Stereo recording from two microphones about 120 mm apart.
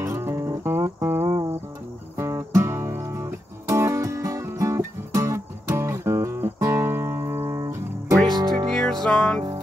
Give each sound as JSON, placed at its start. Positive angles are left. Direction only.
{"t": 0.0, "sound": "music", "side_deg": -20}
{"t": 8.6, "sound": "music", "side_deg": 5}